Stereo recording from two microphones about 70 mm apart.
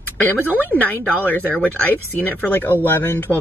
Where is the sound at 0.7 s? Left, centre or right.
Left.